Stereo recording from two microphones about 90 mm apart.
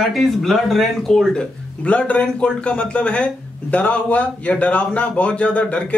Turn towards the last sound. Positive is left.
turn(degrees=15)  # may be behind; listen again after turning